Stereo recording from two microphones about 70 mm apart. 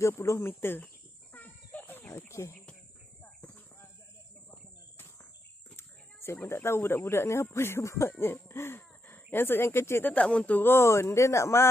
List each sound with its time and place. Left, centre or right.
0.0 s speech: left
1.3 s a sound: left
5.8 s speech: left
10.0 s speech: centre
10.6 s speech: left